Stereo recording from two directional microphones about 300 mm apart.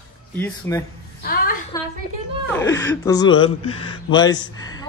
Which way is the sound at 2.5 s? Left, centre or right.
Centre.